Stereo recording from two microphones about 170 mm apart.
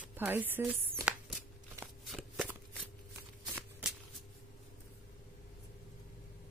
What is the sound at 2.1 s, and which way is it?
Shuffling cards, centre (ahead or behind).